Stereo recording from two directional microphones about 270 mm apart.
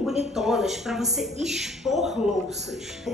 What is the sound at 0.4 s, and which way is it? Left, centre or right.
A woman's voice, centre.